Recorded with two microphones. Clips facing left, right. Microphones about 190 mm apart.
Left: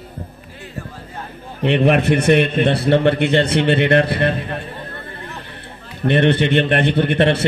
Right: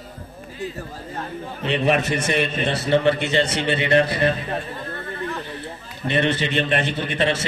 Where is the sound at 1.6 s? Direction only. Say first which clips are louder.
Left 6 dB; 60° left (ahead or behind).